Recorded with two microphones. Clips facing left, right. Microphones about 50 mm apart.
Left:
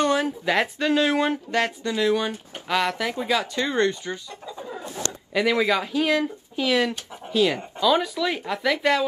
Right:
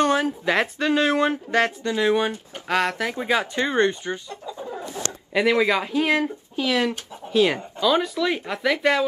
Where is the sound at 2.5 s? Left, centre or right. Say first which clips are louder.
Right 1 dB; right.